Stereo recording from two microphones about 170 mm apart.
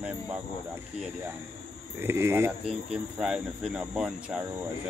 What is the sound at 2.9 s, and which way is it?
Speech, 5° right (ahead or behind).